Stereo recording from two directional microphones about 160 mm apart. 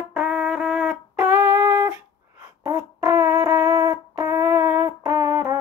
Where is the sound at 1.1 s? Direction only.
15° right (ahead or behind).